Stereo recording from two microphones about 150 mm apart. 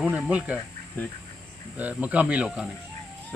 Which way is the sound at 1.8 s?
10° right (ahead or behind).